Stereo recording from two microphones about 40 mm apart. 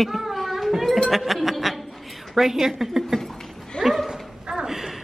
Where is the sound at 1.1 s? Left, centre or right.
Centre.